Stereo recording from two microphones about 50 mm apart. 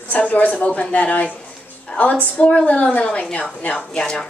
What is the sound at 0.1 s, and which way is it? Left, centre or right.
Speech, left.